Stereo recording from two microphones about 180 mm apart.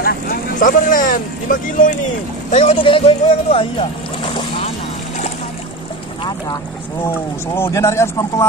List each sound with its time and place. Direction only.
0.0 s speech: 55° left (ahead or behind)
2.5 s speech: 35° left (ahead or behind)
7.5 s speech: 15° left (ahead or behind)